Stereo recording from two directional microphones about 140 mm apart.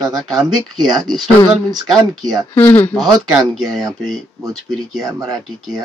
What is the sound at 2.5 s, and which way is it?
Speech, 10° left (ahead or behind).